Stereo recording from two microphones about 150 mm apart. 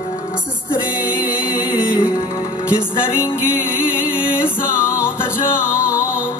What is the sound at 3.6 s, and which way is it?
Music, 15° left (ahead or behind).